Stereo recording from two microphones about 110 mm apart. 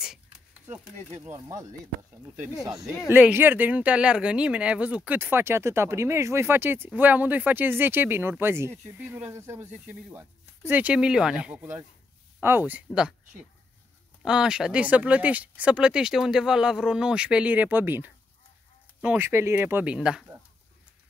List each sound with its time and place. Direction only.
0.7 s speech: 10° right (ahead or behind)
1.3 s speech: 30° right (ahead or behind)
3.1 s speech: 10° right (ahead or behind)
12.4 s speech: 20° right (ahead or behind)
14.2 s speech: 5° right (ahead or behind)
19.2 s speech: 25° right (ahead or behind); by 20.2 s 5° right (ahead or behind)